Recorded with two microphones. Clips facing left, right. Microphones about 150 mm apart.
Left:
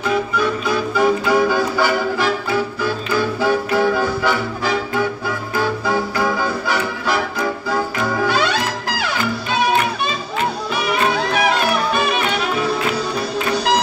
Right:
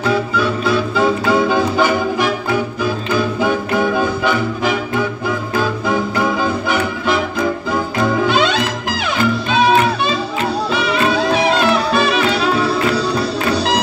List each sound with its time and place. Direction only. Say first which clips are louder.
0.4 s music: right 3 dB; 30° right (ahead or behind)
5.9 s music: right 2 dB; 20° right (ahead or behind)
8.3 s music: right 3 dB; 20° right (ahead or behind)
10.7 s music: right 2 dB; 30° right (ahead or behind)